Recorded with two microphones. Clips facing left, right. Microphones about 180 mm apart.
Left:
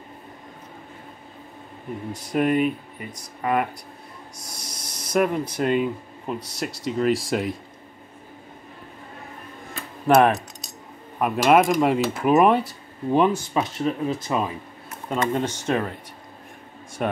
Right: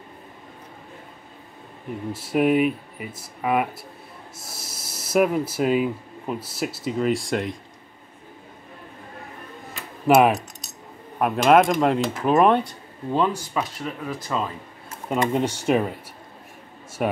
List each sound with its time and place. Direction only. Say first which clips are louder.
2.1 s speech: right 2 dB; 5° right (ahead or behind)
10.0 s speech: even; 5° right (ahead or behind)
13.1 s speech: left 3 dB; 20° left (ahead or behind)
15.0 s speech: right 2 dB; 10° right (ahead or behind)
17.0 s speech: right 1 dB; 5° right (ahead or behind)